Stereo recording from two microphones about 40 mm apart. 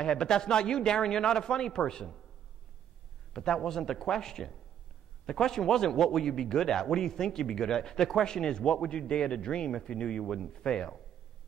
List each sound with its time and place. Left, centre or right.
0.0 s a man's voice: centre
3.3 s a man's voice: centre